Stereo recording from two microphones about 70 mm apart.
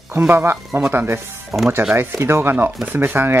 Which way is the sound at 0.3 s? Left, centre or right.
Right.